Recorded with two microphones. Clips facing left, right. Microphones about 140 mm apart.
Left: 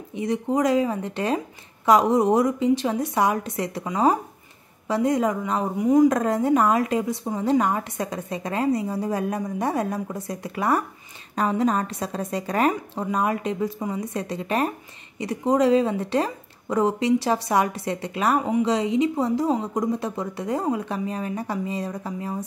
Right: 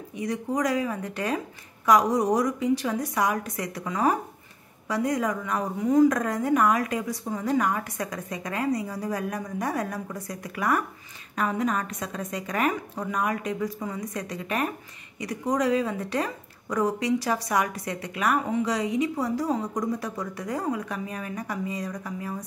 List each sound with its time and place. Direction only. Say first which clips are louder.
0.1 s a woman's voice: left 5 dB; 25° left (ahead or behind)